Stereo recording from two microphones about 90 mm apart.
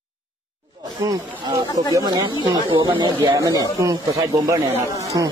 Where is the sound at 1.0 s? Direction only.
35° right (ahead or behind).